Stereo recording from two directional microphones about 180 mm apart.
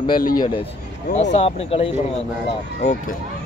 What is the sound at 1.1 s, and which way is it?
A man's voice, 40° left (ahead or behind).